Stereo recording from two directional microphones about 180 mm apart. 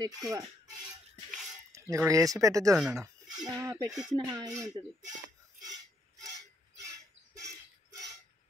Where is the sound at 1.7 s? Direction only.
15° right (ahead or behind).